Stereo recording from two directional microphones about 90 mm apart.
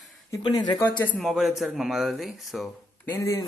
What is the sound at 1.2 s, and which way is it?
Speech, 5° right (ahead or behind).